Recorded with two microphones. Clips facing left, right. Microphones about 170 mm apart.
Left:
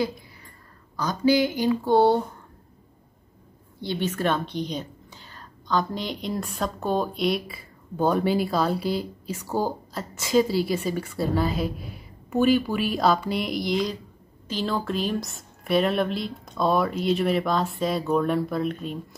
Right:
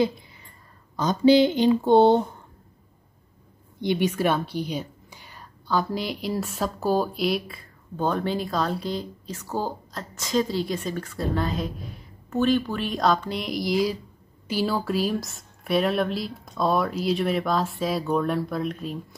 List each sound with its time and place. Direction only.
0.9 s speech: 25° right (ahead or behind)
3.8 s a woman's voice: 15° right (ahead or behind)